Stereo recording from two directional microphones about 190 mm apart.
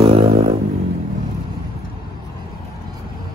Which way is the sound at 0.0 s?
30° right (ahead or behind).